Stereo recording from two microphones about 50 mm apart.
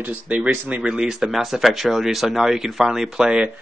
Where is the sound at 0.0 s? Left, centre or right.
Right.